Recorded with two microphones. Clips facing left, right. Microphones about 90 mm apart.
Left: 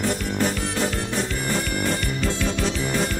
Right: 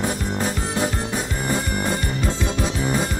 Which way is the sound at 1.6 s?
25° right (ahead or behind).